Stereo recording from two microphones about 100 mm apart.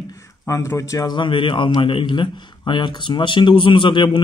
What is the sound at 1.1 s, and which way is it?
A man's voice, 55° left (ahead or behind).